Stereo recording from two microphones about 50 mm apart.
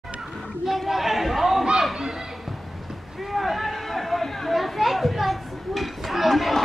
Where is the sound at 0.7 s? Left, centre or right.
Centre.